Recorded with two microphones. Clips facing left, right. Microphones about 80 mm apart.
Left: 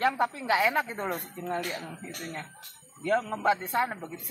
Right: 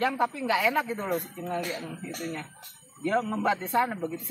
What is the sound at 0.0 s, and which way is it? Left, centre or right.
Speech, left.